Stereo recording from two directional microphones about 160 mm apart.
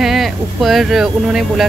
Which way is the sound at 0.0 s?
Centre (ahead or behind).